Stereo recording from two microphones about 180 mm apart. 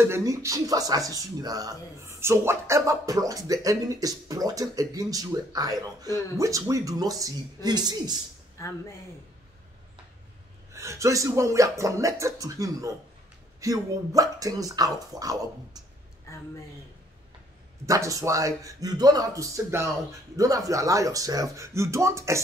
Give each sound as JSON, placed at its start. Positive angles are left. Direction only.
{"t": 0.0, "sound": "speech", "side_deg": -15}
{"t": 8.5, "sound": "speech", "side_deg": 15}
{"t": 10.7, "sound": "speech", "side_deg": -15}
{"t": 16.3, "sound": "a sound", "side_deg": 15}
{"t": 17.8, "sound": "speech", "side_deg": -20}